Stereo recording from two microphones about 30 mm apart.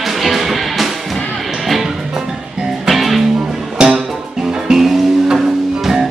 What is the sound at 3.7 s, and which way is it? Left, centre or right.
Music, right.